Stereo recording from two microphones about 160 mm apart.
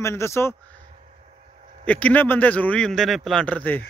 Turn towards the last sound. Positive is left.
turn(degrees=10)  # may be behind; listen again after turning